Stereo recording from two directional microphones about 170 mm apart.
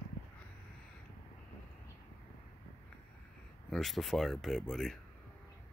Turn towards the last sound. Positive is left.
turn(degrees=0)  # may be behind; listen again after turning